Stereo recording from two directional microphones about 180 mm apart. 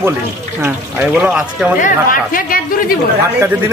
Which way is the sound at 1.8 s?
50° left (ahead or behind).